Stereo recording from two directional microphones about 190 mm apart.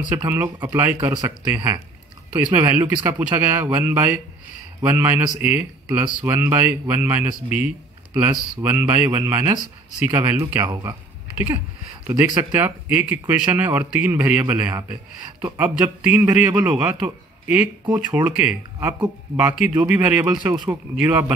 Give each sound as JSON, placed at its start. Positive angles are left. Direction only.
{"t": 0.1, "sound": "speech", "side_deg": -10}
{"t": 7.5, "sound": "a sound", "side_deg": -10}
{"t": 8.5, "sound": "speech", "side_deg": -10}
{"t": 19.7, "sound": "speech", "side_deg": -20}